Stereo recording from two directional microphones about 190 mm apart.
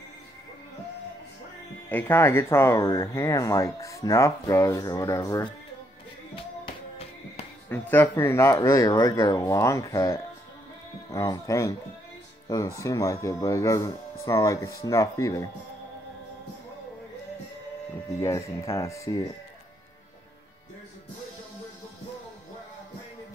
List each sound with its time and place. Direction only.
1.9 s speech: 10° left (ahead or behind)
6.3 s music: 30° left (ahead or behind)
7.7 s speech: 10° left (ahead or behind)
18.2 s speech: 15° left (ahead or behind)